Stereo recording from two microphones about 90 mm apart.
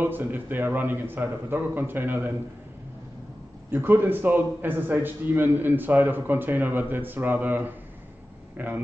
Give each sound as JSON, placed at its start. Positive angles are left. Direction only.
{"t": 0.0, "sound": "a man's voice", "side_deg": -20}
{"t": 3.7, "sound": "a man's voice", "side_deg": -25}